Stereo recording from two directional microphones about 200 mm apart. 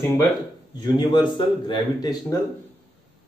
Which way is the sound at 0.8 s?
20° left (ahead or behind).